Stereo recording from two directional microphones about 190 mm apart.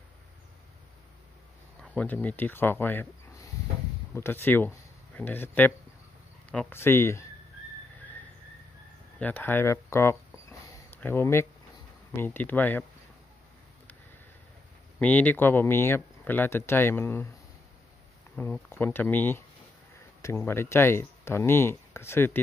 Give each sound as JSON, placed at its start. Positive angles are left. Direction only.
{"t": 1.8, "sound": "speech", "side_deg": 5}
{"t": 9.2, "sound": "speech", "side_deg": 10}
{"t": 10.7, "sound": "a sound", "side_deg": 10}
{"t": 12.2, "sound": "speech", "side_deg": 10}
{"t": 15.0, "sound": "speech", "side_deg": 10}
{"t": 18.3, "sound": "speech", "side_deg": 10}